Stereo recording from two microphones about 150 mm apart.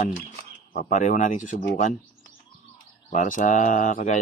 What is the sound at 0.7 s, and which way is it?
Speech, 60° left (ahead or behind).